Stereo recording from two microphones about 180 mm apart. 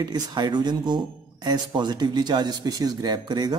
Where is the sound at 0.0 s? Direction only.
20° right (ahead or behind).